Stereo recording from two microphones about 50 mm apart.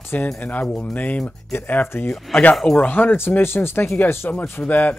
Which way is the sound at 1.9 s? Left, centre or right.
Left.